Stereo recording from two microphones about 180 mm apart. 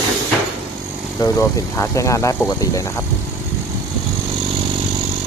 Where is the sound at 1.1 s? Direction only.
20° left (ahead or behind).